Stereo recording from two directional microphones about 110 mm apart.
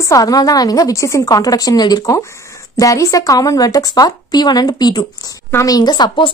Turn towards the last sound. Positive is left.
turn(degrees=45)  # may be behind; listen again after turning